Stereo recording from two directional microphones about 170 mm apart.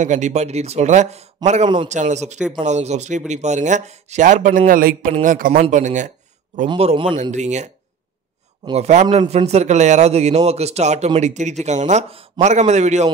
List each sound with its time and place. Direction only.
0.0 s a man's voice: 45° right (ahead or behind)
6.7 s a man's voice: 35° right (ahead or behind)
7.2 s a man's voice: 45° right (ahead or behind)